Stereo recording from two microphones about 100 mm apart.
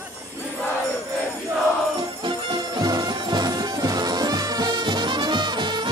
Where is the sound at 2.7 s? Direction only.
40° right (ahead or behind).